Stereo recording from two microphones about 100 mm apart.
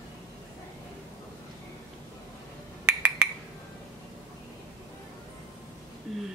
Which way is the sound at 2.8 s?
15° right (ahead or behind).